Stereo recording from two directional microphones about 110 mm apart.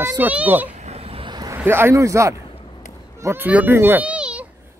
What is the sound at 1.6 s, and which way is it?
A child's voice, 20° right (ahead or behind).